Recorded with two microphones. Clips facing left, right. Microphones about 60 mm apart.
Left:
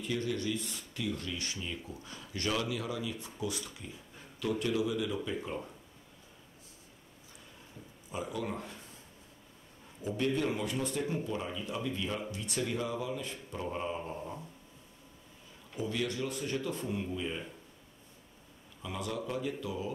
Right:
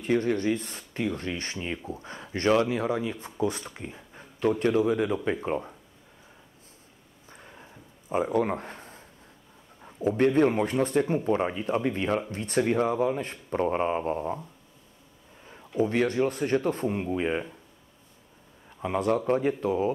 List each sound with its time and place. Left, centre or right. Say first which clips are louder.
0.0 s speech: right 9 dB; right
7.2 s a sound: right 8 dB; right
8.1 s speech: right 11 dB; right
15.4 s speech: right 11 dB; right
18.8 s speech: right 12 dB; right